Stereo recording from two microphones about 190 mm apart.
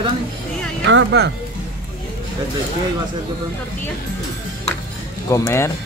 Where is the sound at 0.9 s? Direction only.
70° right (ahead or behind).